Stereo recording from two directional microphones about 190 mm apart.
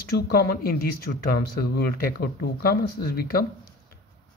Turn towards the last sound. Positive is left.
turn(degrees=50)  # may be behind; listen again after turning